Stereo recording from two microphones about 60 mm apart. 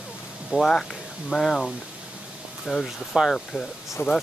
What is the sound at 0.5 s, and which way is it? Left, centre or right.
Speech, centre.